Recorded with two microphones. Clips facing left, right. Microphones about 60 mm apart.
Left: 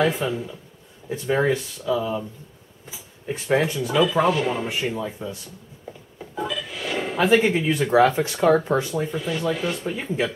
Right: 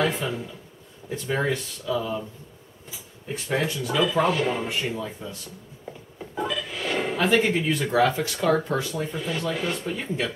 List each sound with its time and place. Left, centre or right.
0.0 s speech: centre
3.4 s speech: left
3.7 s speech: centre
6.1 s music: centre
7.2 s speech: centre
8.2 s speech: left
8.9 s speech: centre